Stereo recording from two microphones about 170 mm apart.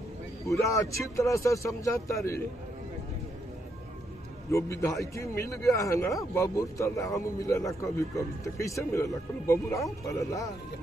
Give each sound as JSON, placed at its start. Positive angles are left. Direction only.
{"t": 0.5, "sound": "a man's voice", "side_deg": 20}
{"t": 4.5, "sound": "a man's voice", "side_deg": 15}